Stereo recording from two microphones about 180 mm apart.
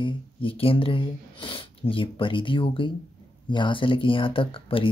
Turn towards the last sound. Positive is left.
turn(degrees=30)  # may be behind; listen again after turning